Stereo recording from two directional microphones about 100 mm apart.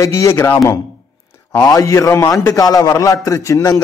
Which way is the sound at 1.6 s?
35° left (ahead or behind).